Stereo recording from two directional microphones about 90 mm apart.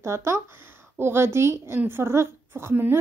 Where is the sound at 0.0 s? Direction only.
30° right (ahead or behind).